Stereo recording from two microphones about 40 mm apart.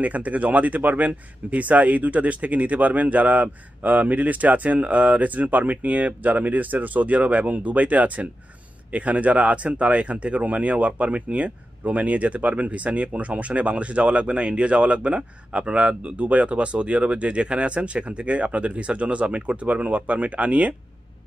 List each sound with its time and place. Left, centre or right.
0.0 s speech: right